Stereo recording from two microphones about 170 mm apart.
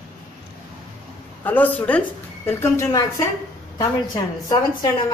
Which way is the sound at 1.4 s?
10° left (ahead or behind).